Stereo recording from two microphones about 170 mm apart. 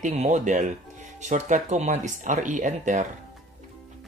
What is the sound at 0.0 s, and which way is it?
Speech, 40° right (ahead or behind).